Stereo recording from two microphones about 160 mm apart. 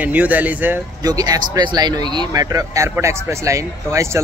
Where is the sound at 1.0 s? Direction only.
25° right (ahead or behind).